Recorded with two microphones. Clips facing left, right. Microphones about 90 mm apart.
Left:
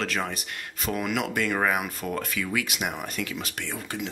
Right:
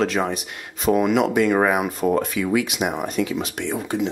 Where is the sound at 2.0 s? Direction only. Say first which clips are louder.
Right 10 dB; 15° right (ahead or behind).